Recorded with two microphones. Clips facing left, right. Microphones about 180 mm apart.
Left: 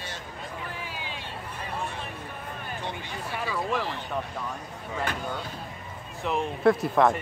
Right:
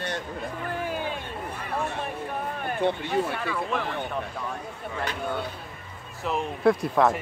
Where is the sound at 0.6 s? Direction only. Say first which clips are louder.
Right 8 dB; 50° right (ahead or behind).